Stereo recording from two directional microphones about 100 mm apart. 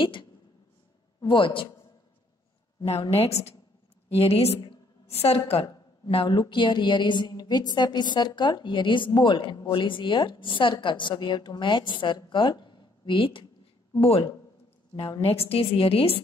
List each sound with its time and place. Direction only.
0.0 s a woman's voice: 55° left (ahead or behind)
2.8 s a woman's voice: 80° left; by 13.5 s 60° left (ahead or behind)
15.2 s a woman's voice: 80° left